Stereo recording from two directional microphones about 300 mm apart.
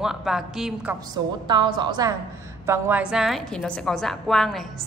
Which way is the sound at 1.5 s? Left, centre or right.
Centre.